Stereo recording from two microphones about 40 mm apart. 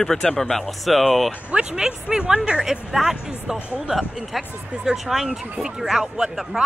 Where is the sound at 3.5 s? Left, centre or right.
Right.